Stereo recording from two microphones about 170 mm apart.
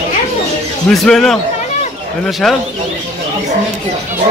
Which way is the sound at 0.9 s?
5° left (ahead or behind).